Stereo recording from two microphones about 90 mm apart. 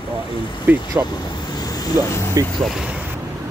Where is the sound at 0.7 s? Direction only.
20° right (ahead or behind).